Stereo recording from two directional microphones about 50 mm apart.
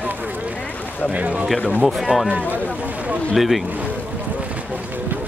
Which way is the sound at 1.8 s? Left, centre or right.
Centre.